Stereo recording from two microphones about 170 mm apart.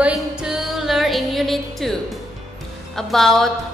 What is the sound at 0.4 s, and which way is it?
Music, centre (ahead or behind).